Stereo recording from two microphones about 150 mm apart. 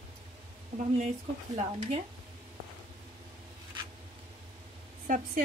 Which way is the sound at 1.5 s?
45° right (ahead or behind).